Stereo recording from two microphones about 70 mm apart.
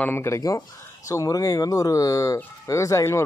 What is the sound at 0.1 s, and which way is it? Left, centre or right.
Speech, left.